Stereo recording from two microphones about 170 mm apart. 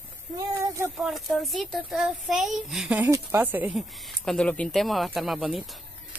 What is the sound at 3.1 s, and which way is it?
Speech, 15° right (ahead or behind).